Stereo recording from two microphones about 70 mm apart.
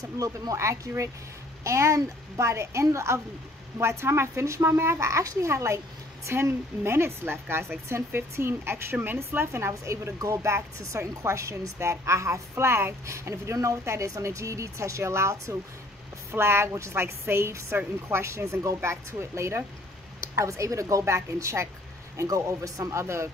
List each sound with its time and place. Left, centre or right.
0.0 s a woman's voice: right